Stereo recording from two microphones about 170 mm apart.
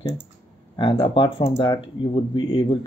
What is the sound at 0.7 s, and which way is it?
Speech, 30° left (ahead or behind).